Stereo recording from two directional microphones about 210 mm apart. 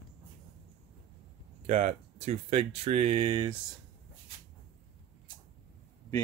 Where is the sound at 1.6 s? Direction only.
35° right (ahead or behind).